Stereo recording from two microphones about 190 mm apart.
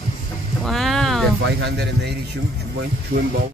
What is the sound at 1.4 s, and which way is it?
Speech, 65° right (ahead or behind).